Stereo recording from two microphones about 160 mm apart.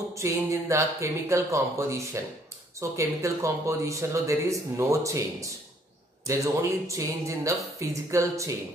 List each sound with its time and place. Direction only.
0.1 s speech: 20° right (ahead or behind)